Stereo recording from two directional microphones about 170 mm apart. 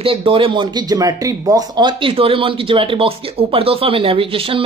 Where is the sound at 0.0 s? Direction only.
30° right (ahead or behind).